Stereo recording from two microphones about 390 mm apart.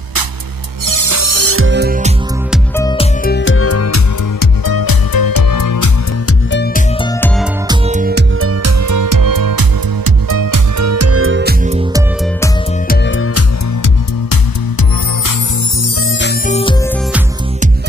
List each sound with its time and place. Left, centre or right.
0.8 s music: right
2.5 s music: centre
3.3 s music: left
4.6 s music: left
6.2 s music: left
7.0 s music: centre
7.6 s music: centre
12.8 s music: left
14.3 s music: left
16.1 s music: left